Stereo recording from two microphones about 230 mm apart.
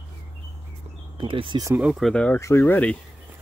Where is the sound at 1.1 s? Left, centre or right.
Right.